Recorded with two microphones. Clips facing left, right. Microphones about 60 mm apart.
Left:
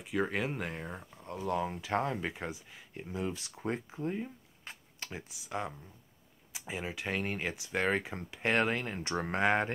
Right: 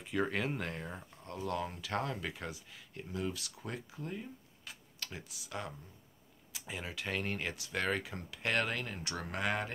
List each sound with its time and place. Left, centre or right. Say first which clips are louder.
0.0 s speech: left 2 dB; centre; by 4.3 s left
4.7 s a sound: left 3 dB; left
5.0 s speech: left 3 dB; left